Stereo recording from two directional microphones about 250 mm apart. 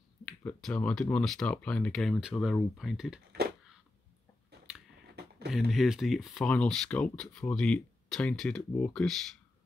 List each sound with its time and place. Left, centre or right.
0.2 s speech: centre
5.2 s a sound: right
5.5 s speech: centre